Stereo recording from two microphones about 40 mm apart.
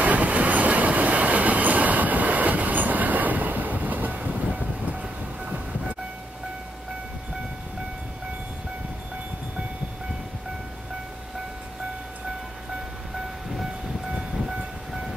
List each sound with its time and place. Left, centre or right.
0.0 s train: right